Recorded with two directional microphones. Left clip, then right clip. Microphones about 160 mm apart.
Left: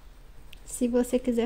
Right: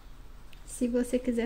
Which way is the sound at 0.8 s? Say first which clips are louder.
Left 4 dB; 40° left (ahead or behind).